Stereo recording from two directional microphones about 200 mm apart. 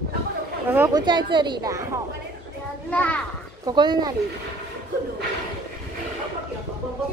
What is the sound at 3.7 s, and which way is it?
Speech, 20° right (ahead or behind).